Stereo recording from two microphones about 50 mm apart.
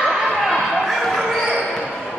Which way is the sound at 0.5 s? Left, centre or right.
Centre.